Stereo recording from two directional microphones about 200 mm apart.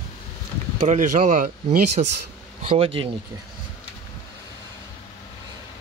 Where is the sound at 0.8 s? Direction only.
40° right (ahead or behind).